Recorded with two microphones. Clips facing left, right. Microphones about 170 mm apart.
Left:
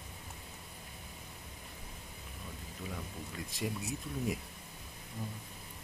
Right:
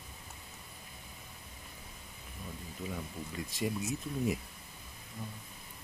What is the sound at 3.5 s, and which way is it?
Speech, centre (ahead or behind).